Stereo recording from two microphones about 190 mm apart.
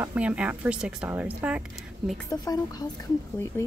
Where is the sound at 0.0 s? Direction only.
5° right (ahead or behind).